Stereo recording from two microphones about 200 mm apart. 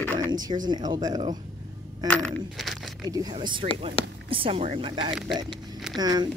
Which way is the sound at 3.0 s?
20° right (ahead or behind).